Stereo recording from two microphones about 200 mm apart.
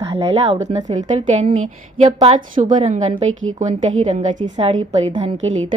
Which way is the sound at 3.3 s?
90° right.